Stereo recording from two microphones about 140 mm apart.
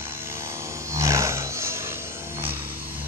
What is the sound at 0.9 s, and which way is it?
Roar, 20° right (ahead or behind).